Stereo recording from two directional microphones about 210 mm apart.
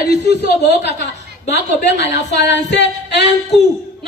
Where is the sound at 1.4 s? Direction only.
55° left (ahead or behind).